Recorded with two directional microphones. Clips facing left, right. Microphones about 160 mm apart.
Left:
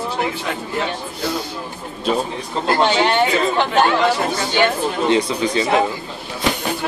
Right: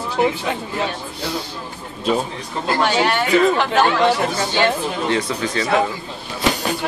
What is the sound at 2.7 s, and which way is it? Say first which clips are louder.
Speech: left 2 dB; 25° left (ahead or behind).